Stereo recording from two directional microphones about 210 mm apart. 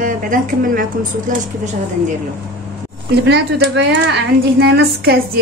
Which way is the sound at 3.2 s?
55° right (ahead or behind).